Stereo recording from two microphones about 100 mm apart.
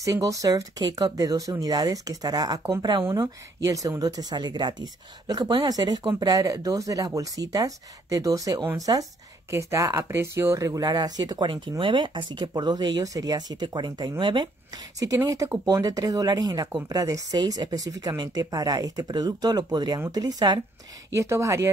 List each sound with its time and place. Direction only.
0.0 s speech: 35° right (ahead or behind)
21.1 s speech: 30° right (ahead or behind)